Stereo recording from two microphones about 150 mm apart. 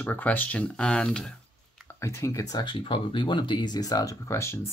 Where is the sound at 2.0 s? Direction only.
20° left (ahead or behind).